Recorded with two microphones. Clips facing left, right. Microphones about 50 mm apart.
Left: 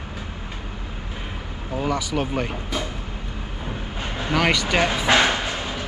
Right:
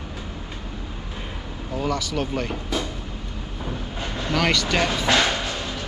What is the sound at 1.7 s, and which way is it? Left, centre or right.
Speech, centre.